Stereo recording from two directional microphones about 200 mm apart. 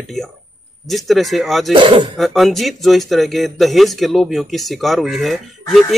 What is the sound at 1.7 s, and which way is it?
Speech, 25° right (ahead or behind).